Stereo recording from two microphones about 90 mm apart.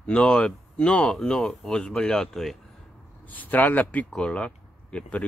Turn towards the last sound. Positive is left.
turn(degrees=15)  # may be behind; listen again after turning